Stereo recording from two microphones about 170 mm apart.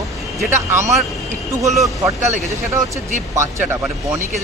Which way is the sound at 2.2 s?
45° right (ahead or behind).